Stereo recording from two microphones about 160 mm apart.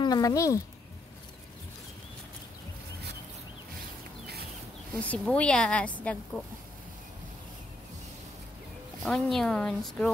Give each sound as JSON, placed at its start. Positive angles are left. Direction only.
{"t": 0.0, "sound": "speech", "side_deg": 25}
{"t": 5.0, "sound": "a woman's voice", "side_deg": 10}
{"t": 9.0, "sound": "speech", "side_deg": 5}